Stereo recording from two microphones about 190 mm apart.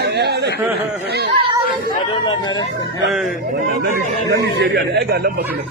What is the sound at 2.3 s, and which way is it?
Speech, 25° left (ahead or behind).